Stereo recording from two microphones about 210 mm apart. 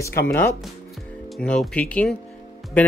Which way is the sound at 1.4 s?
5° left (ahead or behind).